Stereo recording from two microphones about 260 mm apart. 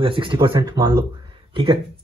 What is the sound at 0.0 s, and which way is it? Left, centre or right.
Speech, centre.